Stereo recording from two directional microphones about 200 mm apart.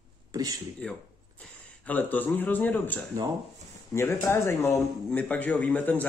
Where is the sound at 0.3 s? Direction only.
20° right (ahead or behind).